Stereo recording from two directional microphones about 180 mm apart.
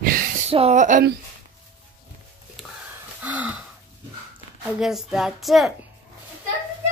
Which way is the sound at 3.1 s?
10° right (ahead or behind).